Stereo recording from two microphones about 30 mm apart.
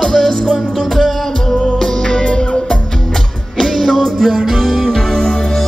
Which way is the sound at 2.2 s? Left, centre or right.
Left.